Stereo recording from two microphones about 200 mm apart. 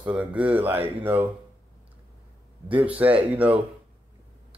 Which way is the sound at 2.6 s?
5° right (ahead or behind).